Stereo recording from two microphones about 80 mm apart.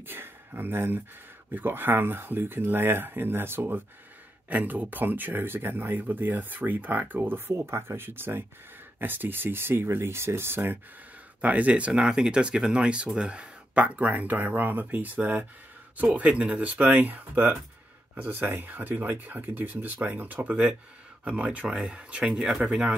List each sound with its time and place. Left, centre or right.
0.0 s speech: right
11.4 s speech: centre